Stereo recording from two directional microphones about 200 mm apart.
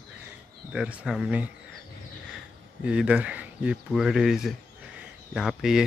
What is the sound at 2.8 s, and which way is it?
Speech, 5° right (ahead or behind).